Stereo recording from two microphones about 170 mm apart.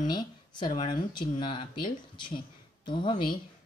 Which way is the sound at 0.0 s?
25° left (ahead or behind).